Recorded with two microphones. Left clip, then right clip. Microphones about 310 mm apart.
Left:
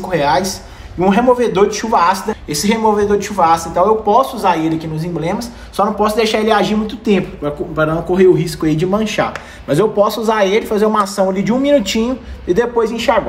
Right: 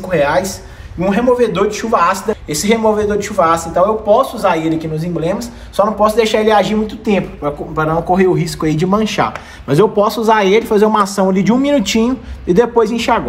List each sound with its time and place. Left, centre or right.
0.1 s speech: centre; by 13.2 s right